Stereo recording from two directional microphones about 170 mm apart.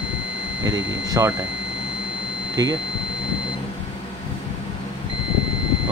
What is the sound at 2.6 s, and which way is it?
Speech, 20° right (ahead or behind).